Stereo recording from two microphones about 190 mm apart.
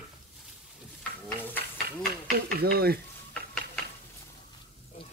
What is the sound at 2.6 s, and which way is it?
Speech, 55° right (ahead or behind).